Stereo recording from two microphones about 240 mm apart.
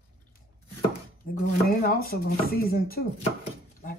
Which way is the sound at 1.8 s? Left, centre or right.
Left.